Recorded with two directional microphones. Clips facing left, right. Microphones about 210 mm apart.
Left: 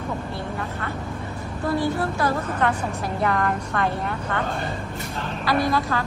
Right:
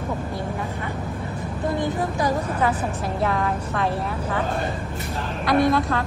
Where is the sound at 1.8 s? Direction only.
15° right (ahead or behind).